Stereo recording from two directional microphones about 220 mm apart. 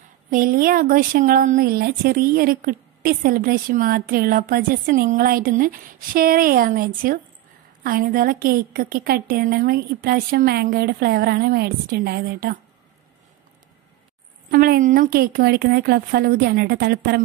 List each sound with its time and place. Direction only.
0.3 s a woman's voice: 40° right (ahead or behind)
14.5 s a woman's voice: 40° right (ahead or behind)